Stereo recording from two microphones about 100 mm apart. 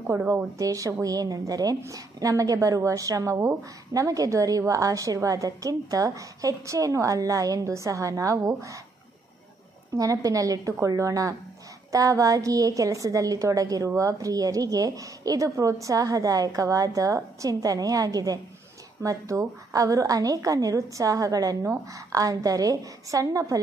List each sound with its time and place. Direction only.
0.0 s a woman's voice: 25° right (ahead or behind)
9.9 s a woman's voice: 35° right (ahead or behind)